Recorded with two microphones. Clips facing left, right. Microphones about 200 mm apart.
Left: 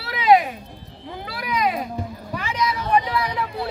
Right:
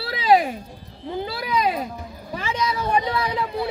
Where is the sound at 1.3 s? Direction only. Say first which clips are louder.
Left 1 dB; 30° right (ahead or behind).